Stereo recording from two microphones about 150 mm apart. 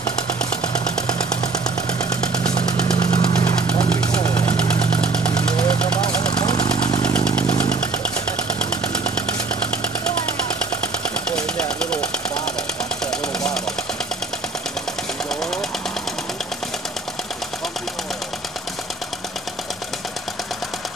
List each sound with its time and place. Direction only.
1.0 s a sound: 30° left (ahead or behind)
2.0 s vehicle: 25° left (ahead or behind)
6.4 s vehicle: 25° left (ahead or behind)
7.0 s motorcycle: 5° left (ahead or behind)
11.2 s vehicle: 5° left (ahead or behind)
11.8 s engine: 5° left (ahead or behind)